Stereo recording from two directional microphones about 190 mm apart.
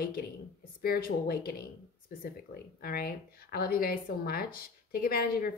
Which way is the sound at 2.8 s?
50° left (ahead or behind).